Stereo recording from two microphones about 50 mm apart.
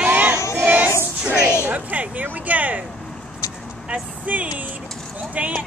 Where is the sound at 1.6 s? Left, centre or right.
Right.